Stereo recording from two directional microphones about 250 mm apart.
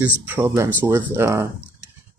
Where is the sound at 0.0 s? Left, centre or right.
Centre.